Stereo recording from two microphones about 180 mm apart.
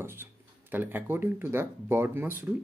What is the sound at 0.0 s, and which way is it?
Speech, 10° right (ahead or behind).